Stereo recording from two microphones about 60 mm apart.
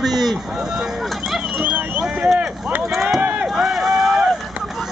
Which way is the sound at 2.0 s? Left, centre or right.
Centre.